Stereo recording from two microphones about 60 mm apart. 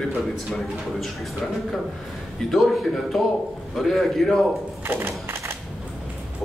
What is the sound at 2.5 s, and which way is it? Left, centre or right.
A man's voice, centre.